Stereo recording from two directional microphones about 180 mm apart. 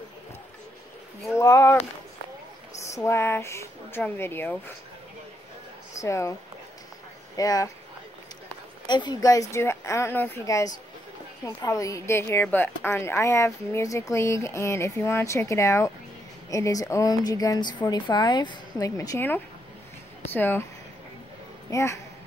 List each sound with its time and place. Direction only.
1.4 s a woman's voice: 15° left (ahead or behind)
2.9 s a woman's voice: 15° left (ahead or behind)
5.9 s speech: 15° left (ahead or behind)
7.3 s speech: 20° left (ahead or behind)
8.8 s a woman's voice: 25° left (ahead or behind)
21.6 s a woman's voice: 15° left (ahead or behind)